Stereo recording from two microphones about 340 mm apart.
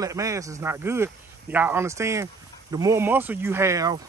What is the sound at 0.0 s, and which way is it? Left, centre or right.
Speech, centre.